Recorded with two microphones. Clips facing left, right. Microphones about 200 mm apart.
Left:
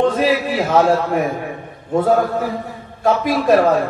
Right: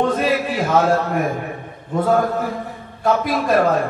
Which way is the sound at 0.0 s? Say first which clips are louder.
Left 2 dB; 50° right (ahead or behind).